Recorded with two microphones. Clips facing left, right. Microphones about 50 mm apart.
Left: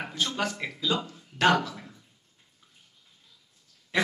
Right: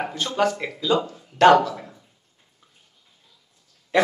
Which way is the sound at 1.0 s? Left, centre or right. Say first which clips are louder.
Right 9 dB; right.